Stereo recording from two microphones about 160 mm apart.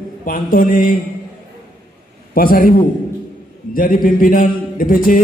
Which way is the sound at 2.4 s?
65° left (ahead or behind).